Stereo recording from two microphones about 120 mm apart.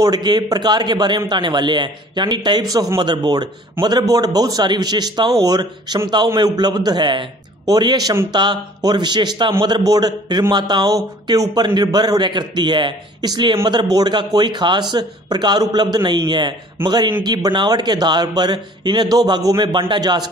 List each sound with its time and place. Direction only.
0.0 s a man's voice: 35° right (ahead or behind)